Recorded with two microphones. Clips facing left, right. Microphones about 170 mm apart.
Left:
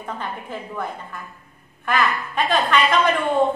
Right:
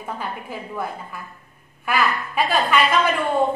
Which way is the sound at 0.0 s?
5° right (ahead or behind).